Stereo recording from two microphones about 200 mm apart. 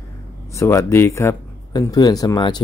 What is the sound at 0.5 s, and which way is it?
Speech, 15° left (ahead or behind).